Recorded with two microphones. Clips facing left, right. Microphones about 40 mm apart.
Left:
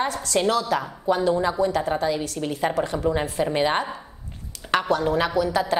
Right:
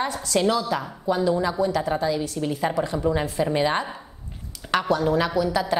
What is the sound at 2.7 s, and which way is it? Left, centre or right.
A woman's voice, left.